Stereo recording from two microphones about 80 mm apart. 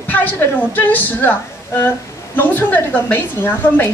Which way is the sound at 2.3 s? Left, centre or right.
Left.